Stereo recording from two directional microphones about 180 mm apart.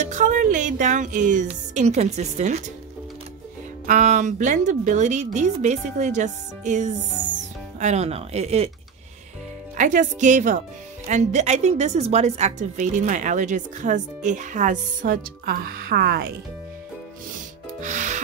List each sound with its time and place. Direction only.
0.0 s speech: 45° right (ahead or behind)
3.8 s a woman's voice: 45° right (ahead or behind)
9.8 s a woman's voice: 45° right (ahead or behind); by 16.3 s 65° right (ahead or behind)
17.8 s music: 40° right (ahead or behind)